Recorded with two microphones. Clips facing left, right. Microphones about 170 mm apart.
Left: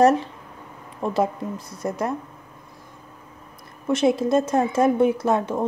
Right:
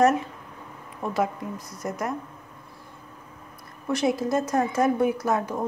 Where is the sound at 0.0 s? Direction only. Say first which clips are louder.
Left 4 dB; 30° left (ahead or behind).